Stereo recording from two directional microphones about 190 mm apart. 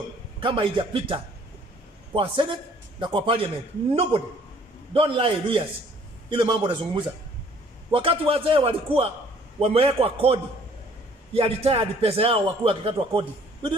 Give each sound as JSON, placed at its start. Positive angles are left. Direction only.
{"t": 0.4, "sound": "a man's voice", "side_deg": -25}
{"t": 4.9, "sound": "a man's voice", "side_deg": -25}